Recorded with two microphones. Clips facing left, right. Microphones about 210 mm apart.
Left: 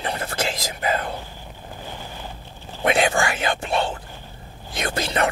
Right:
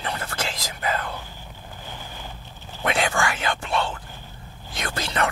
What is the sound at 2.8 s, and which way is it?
Whispering, 20° left (ahead or behind).